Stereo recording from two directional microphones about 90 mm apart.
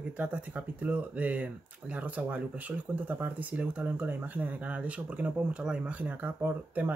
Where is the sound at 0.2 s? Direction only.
20° right (ahead or behind).